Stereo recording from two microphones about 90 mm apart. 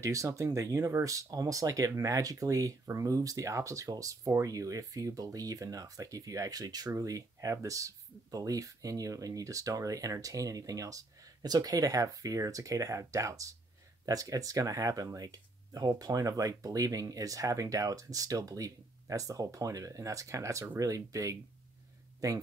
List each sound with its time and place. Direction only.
0.0 s speech: 35° right (ahead or behind)